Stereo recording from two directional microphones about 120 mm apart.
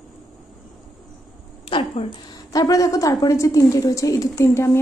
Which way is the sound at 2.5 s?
30° left (ahead or behind).